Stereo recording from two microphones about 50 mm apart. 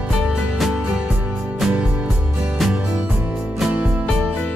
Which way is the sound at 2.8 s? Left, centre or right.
Right.